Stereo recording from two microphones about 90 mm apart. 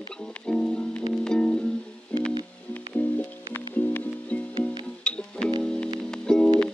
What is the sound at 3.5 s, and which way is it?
Music, 20° left (ahead or behind).